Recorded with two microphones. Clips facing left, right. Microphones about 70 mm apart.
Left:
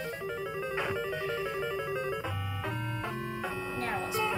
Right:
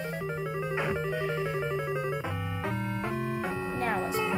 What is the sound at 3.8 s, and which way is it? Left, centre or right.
Music, right.